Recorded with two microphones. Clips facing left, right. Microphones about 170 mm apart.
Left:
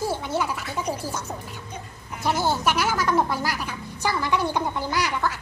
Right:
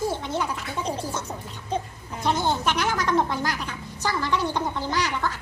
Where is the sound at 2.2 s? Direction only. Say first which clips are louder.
Left 1 dB; 10° left (ahead or behind).